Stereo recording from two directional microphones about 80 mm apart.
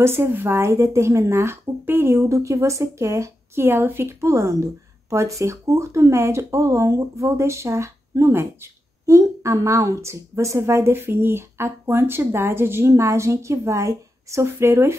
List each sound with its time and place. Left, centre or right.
0.0 s a woman's voice: right